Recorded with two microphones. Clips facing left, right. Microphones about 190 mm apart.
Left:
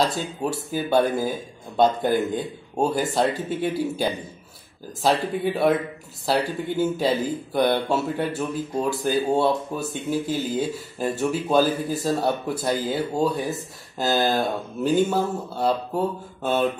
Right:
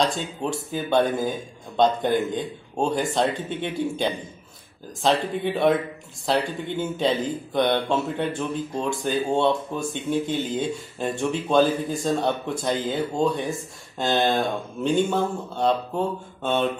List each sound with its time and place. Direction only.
0.0 s speech: 5° left (ahead or behind)